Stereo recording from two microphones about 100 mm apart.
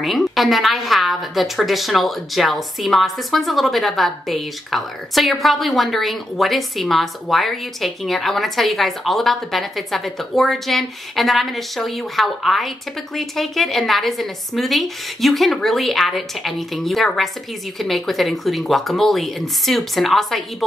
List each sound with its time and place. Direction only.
0.0 s a woman's voice: centre (ahead or behind)